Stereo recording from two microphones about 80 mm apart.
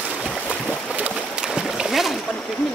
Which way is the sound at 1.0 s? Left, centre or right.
Centre.